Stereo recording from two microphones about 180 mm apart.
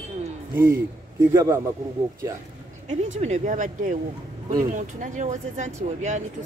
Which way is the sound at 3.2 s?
40° right (ahead or behind).